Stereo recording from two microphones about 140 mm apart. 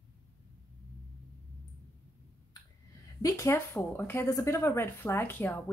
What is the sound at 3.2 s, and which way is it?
Speech, 20° left (ahead or behind).